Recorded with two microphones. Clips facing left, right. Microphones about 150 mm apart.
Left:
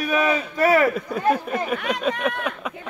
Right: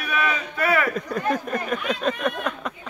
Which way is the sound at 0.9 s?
5° left (ahead or behind).